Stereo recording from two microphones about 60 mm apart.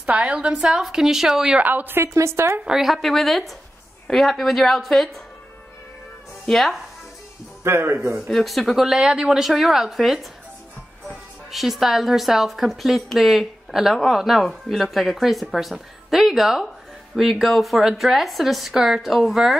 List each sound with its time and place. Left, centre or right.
0.0 s a woman's voice: centre
1.6 s a woman's voice: right
2.0 s a woman's voice: right
2.6 s a woman's voice: centre
3.0 s speech: centre
6.4 s speech: centre
7.6 s a woman's voice: right
8.3 s speech: centre
11.5 s speech: centre